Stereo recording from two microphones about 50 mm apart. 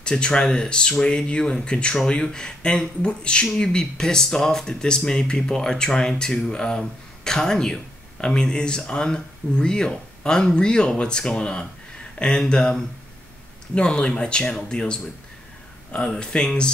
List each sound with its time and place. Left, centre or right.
0.0 s speech: centre